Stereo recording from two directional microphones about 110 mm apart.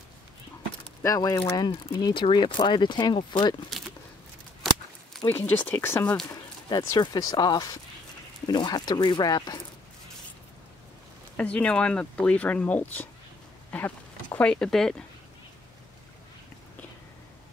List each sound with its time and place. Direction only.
1.0 s speech: 30° left (ahead or behind)
2.3 s speech: 45° left (ahead or behind)
4.6 s a sound: centre (ahead or behind)
5.4 s speech: 15° left (ahead or behind)
6.8 s speech: 35° left (ahead or behind)
11.3 s speech: 10° left (ahead or behind)